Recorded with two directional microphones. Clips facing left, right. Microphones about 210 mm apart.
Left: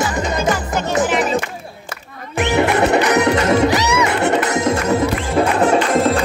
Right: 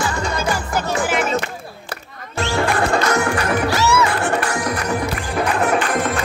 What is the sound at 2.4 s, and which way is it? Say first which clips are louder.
Music: left 4 dB; 20° left (ahead or behind).